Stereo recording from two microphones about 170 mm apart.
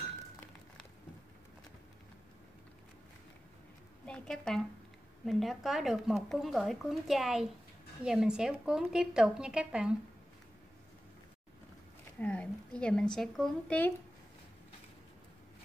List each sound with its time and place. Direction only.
4.0 s a woman's voice: 5° left (ahead or behind)
12.2 s speech: 10° left (ahead or behind)